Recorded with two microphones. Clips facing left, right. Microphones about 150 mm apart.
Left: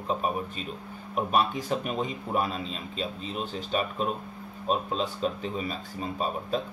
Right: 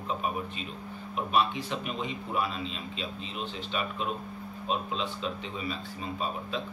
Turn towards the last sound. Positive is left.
turn(degrees=45)  # may be behind; listen again after turning